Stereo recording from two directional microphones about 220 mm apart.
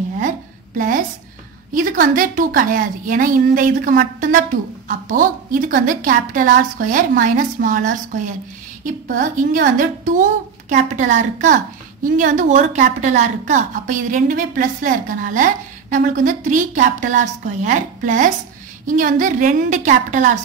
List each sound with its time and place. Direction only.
0.7 s a woman's voice: 35° right (ahead or behind)